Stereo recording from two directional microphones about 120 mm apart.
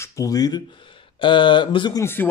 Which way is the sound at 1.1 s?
40° left (ahead or behind).